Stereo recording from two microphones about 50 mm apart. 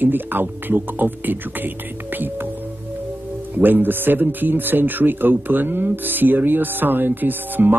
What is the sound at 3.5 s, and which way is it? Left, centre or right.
Speech, right.